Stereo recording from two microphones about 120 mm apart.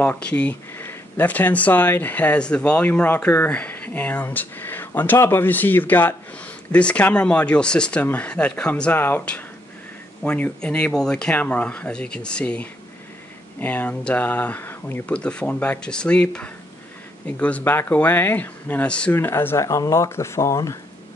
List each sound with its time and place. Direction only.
0.0 s speech: 10° left (ahead or behind)